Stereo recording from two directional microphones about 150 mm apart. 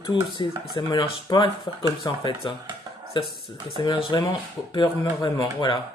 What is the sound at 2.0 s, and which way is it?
Speech, 20° left (ahead or behind).